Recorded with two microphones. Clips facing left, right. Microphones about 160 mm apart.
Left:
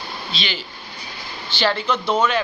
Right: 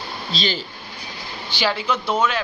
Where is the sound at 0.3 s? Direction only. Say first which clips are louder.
Right 5 dB; 40° right (ahead or behind).